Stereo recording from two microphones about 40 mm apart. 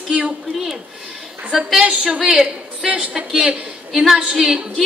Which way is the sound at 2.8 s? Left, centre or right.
Centre.